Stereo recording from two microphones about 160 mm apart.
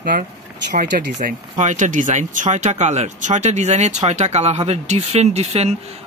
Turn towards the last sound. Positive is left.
turn(degrees=-40)  # may be behind; listen again after turning